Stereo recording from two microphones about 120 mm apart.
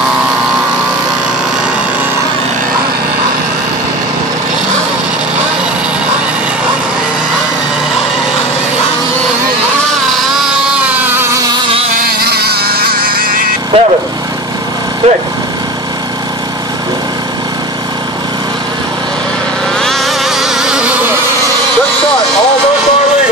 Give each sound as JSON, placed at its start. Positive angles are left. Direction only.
{"t": 13.7, "sound": "vehicle", "side_deg": -50}
{"t": 15.0, "sound": "speech", "side_deg": -60}
{"t": 19.8, "sound": "insect", "side_deg": 0}